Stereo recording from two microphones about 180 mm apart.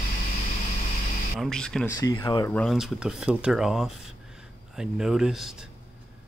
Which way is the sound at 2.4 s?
5° left (ahead or behind).